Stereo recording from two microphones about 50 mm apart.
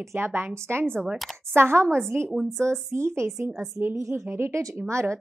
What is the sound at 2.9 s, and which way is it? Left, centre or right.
A woman's voice, right.